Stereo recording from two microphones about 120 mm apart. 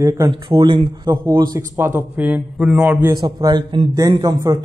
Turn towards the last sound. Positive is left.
turn(degrees=-35)  # may be behind; listen again after turning